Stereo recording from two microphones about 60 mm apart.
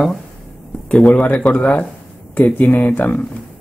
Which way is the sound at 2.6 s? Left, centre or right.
Left.